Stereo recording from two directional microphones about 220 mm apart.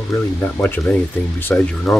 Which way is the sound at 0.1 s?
10° left (ahead or behind).